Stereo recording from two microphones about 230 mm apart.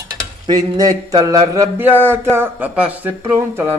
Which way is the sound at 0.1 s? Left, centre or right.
Centre.